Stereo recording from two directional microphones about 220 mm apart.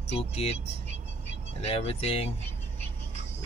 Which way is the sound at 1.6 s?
25° left (ahead or behind).